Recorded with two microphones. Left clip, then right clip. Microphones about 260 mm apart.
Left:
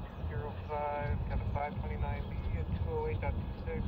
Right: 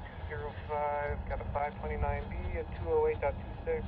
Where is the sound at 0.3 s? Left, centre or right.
Right.